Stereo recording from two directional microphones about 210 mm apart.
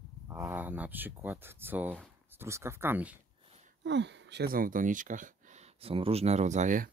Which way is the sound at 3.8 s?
55° right (ahead or behind).